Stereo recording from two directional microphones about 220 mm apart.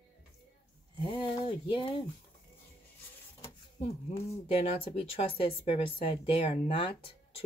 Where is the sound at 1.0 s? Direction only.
25° left (ahead or behind).